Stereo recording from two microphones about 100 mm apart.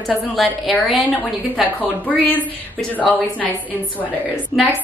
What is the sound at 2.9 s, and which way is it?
A woman's voice, 15° left (ahead or behind).